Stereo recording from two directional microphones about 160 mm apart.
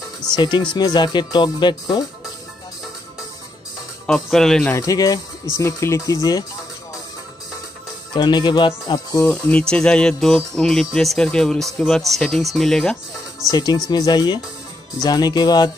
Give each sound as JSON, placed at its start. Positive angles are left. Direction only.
{"t": 0.4, "sound": "speech", "side_deg": 25}
{"t": 4.0, "sound": "speech", "side_deg": 5}
{"t": 4.7, "sound": "speech", "side_deg": 20}
{"t": 8.1, "sound": "speech", "side_deg": 30}
{"t": 9.2, "sound": "speech", "side_deg": 10}
{"t": 13.5, "sound": "speech", "side_deg": 25}